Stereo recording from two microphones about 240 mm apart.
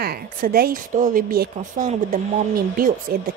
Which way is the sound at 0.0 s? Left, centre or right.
Right.